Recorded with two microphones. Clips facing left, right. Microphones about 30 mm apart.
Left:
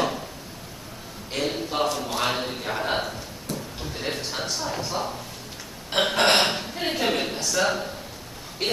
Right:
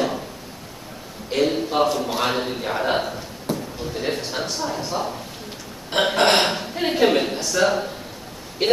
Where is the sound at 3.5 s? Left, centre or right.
Centre.